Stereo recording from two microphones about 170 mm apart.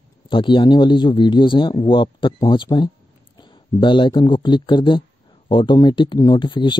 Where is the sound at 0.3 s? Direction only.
30° left (ahead or behind).